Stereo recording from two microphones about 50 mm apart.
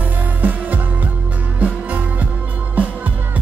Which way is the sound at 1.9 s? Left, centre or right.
Right.